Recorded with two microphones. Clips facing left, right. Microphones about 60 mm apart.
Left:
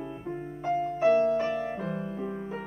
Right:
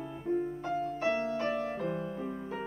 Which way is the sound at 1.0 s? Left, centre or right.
Centre.